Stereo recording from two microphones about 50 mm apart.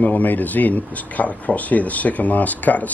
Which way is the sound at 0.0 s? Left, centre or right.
Left.